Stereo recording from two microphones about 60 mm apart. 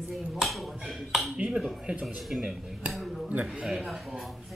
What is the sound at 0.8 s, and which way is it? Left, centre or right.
Ping, centre.